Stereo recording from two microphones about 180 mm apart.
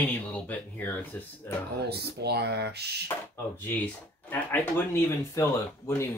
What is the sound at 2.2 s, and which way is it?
Speech, 65° right (ahead or behind).